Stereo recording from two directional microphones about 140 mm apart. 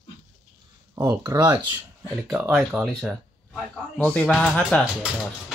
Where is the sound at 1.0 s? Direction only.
20° right (ahead or behind).